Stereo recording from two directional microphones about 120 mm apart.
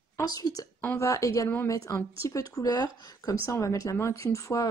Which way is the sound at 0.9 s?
25° left (ahead or behind).